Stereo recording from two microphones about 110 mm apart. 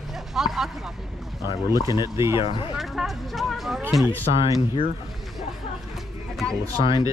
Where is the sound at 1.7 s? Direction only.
40° left (ahead or behind).